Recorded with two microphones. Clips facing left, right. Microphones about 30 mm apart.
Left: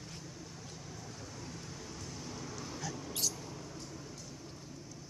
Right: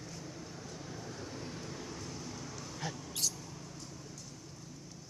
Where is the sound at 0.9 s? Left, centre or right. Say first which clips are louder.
Right 4 dB; centre.